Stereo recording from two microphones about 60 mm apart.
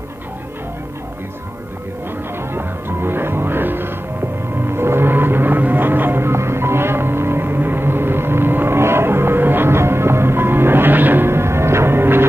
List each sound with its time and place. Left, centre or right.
2.5 s music: right
4.6 s vehicle: right